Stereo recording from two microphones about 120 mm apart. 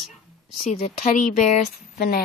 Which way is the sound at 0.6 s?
90° left.